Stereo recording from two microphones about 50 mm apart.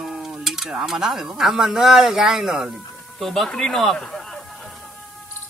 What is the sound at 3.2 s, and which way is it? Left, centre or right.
Speech, centre.